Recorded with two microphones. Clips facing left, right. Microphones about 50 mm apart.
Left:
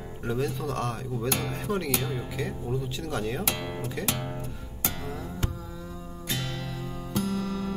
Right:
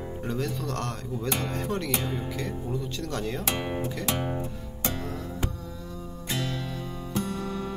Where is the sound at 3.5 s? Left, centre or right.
Right.